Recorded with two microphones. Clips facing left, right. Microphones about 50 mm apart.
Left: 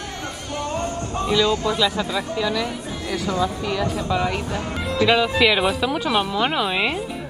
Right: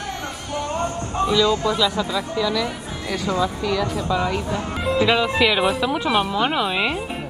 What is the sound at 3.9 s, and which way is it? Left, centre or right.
Speech, centre.